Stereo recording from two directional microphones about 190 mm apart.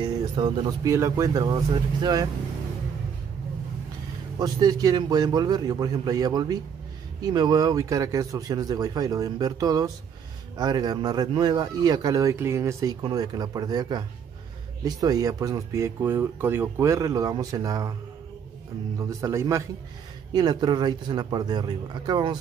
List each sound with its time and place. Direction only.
0.0 s speech: 25° right (ahead or behind)
4.4 s speech: 20° right (ahead or behind)
18.9 s speech: 15° right (ahead or behind)